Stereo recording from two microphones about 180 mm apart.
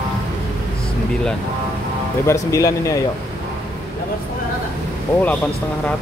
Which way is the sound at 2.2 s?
20° left (ahead or behind).